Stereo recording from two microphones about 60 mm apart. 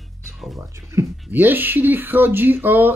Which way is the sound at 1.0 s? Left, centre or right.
Right.